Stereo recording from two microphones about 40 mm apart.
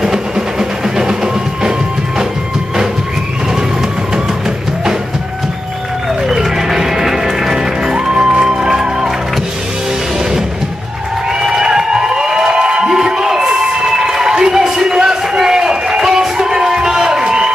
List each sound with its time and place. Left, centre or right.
0.0 s music: centre
6.2 s music: centre
11.4 s crowd: centre